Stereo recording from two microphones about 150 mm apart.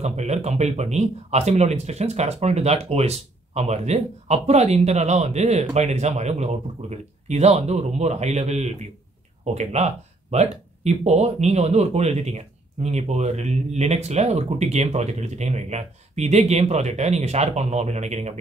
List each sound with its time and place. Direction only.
0.0 s speech: 50° right (ahead or behind)